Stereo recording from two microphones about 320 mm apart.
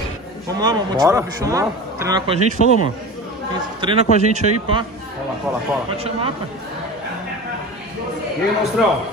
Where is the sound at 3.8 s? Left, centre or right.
Centre.